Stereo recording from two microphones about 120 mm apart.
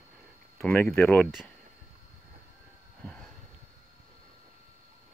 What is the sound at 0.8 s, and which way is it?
Speech, 5° left (ahead or behind).